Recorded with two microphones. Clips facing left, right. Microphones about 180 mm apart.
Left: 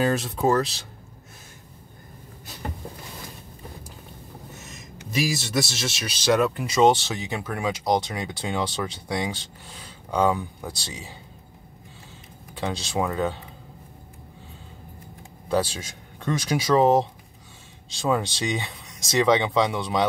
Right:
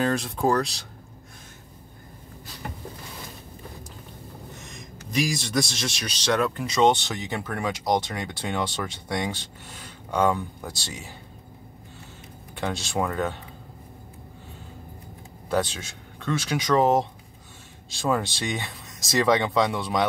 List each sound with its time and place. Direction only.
0.0 s speech: 5° left (ahead or behind)
4.6 s speech: 5° left (ahead or behind)
12.5 s speech: centre (ahead or behind)
15.5 s speech: 10° left (ahead or behind)